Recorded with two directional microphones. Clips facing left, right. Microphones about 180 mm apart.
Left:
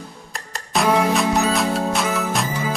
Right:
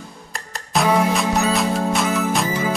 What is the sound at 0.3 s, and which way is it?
Music, centre (ahead or behind).